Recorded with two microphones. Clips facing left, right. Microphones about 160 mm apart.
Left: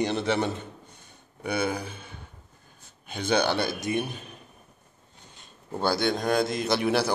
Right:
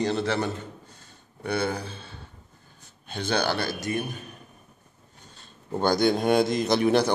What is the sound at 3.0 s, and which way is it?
Speech, 15° left (ahead or behind).